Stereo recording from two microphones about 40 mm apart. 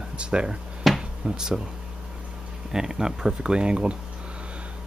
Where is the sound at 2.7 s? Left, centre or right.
Centre.